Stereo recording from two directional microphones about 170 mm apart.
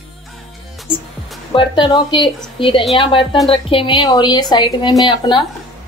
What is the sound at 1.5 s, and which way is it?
A woman's voice, 30° left (ahead or behind).